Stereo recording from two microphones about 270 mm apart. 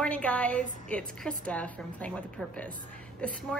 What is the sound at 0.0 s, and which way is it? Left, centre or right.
A woman's voice, centre.